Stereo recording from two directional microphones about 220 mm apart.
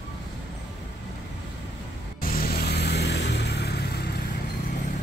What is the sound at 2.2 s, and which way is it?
Vehicle, 45° left (ahead or behind).